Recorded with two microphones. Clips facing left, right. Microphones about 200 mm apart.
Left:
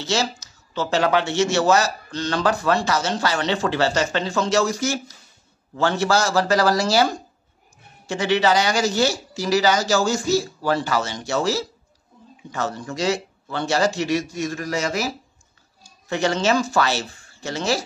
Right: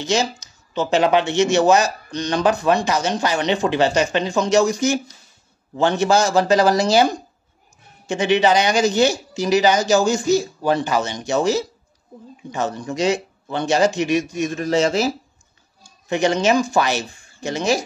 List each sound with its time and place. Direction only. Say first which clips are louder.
0.0 s speech: right 3 dB; 15° right (ahead or behind)
16.1 s speech: right 3 dB; 15° right (ahead or behind)